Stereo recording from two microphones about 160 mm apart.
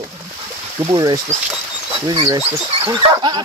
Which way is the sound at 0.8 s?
25° right (ahead or behind).